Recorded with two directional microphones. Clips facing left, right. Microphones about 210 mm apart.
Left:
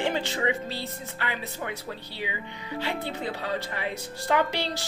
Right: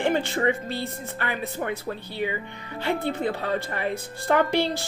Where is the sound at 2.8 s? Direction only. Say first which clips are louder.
Right 7 dB; 55° right (ahead or behind).